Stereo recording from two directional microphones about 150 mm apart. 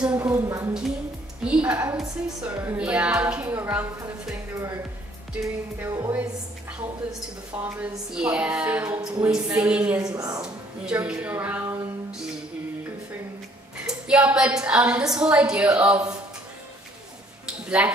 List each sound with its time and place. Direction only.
0.0 s a woman's voice: 10° right (ahead or behind)
0.4 s a woman's voice: 20° right (ahead or behind)
1.4 s a woman's voice: 5° right (ahead or behind)
5.4 s a woman's voice: 20° right (ahead or behind)
10.0 s a woman's voice: 25° right (ahead or behind)
10.4 s a woman's voice: 5° right (ahead or behind)
13.8 s a woman's voice: 5° right (ahead or behind)
17.5 s speech: 10° right (ahead or behind)